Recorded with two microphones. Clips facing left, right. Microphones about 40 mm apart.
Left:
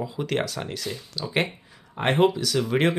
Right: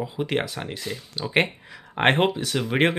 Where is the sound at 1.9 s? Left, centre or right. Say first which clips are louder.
Right 1 dB; right.